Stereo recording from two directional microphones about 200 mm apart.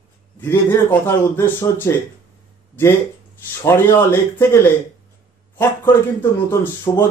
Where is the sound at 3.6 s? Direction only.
10° left (ahead or behind).